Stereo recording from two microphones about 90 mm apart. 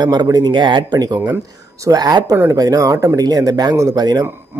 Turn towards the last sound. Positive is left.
turn(degrees=-50)  # may be behind; listen again after turning